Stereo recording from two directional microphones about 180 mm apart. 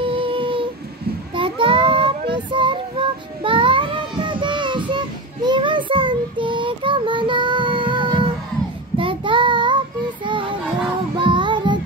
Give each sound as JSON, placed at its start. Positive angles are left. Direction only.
{"t": 0.0, "sound": "child singing", "side_deg": -30}
{"t": 10.2, "sound": "music", "side_deg": -25}